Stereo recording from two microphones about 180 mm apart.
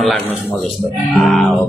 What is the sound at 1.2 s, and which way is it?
Speech, centre (ahead or behind).